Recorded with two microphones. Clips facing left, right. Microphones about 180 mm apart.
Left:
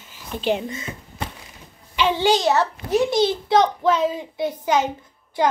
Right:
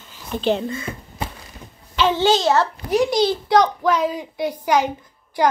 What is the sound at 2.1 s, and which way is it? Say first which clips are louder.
A child's voice: right 1 dB; 15° left (ahead or behind).